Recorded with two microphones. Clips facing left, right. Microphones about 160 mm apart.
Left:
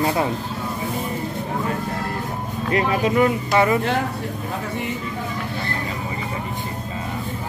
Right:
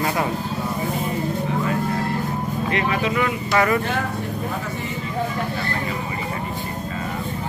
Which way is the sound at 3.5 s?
20° left (ahead or behind).